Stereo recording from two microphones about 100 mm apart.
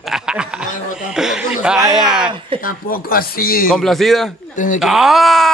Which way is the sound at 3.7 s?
5° left (ahead or behind).